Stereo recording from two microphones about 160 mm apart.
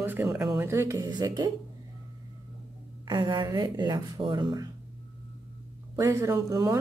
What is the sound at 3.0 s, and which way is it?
Speech, 25° right (ahead or behind).